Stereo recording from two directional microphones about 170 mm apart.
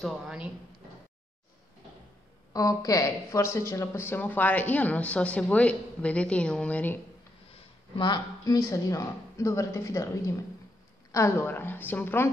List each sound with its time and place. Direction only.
0.0 s speech: 5° right (ahead or behind)
2.5 s speech: 20° left (ahead or behind)
7.9 s speech: 25° left (ahead or behind); by 12.3 s 10° left (ahead or behind)